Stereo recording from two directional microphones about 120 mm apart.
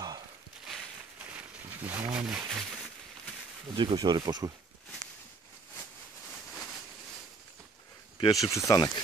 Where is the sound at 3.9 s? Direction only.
35° right (ahead or behind).